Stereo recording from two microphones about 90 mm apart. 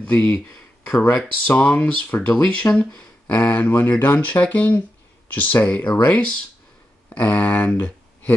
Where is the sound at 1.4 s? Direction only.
20° left (ahead or behind).